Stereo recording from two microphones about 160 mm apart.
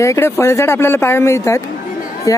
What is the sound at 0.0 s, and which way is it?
Speech, 15° left (ahead or behind).